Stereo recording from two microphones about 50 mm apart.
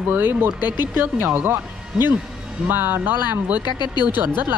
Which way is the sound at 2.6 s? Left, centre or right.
Right.